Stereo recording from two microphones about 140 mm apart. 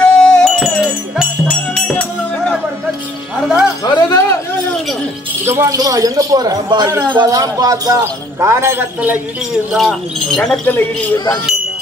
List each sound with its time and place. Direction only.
0.0 s wind chime: 5° left (ahead or behind)
1.5 s music: 10° left (ahead or behind)
3.3 s music: 5° right (ahead or behind)
3.8 s a sound: 20° left (ahead or behind)
5.4 s speech: 20° right (ahead or behind)
9.7 s speech: centre (ahead or behind)